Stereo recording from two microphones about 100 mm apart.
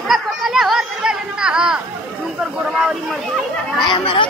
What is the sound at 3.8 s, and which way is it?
Speech, 55° left (ahead or behind).